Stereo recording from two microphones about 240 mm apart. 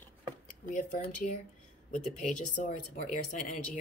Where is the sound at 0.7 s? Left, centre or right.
Left.